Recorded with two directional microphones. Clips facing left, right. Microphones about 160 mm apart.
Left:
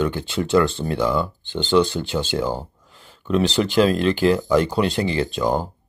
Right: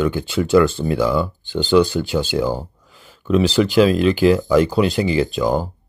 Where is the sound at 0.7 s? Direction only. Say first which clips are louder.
Right 3 dB; 10° right (ahead or behind).